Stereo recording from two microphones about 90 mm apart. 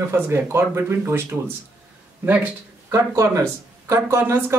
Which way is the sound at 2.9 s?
35° right (ahead or behind).